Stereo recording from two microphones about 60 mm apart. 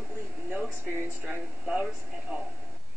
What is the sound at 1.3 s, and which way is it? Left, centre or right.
Speech, centre.